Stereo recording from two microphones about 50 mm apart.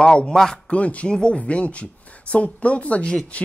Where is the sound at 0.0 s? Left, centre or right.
Centre.